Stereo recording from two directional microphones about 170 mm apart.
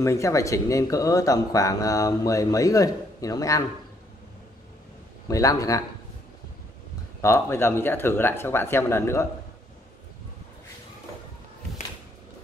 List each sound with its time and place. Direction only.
0.0 s speech: 15° left (ahead or behind)
5.3 s speech: 20° left (ahead or behind)
7.2 s speech: 15° left (ahead or behind)